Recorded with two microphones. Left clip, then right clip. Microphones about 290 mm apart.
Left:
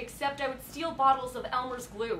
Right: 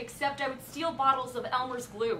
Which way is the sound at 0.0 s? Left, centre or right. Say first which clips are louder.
Even; left.